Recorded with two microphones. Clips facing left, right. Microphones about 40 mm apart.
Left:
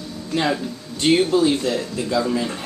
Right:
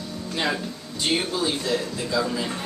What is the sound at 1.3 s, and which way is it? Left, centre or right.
Speech, left.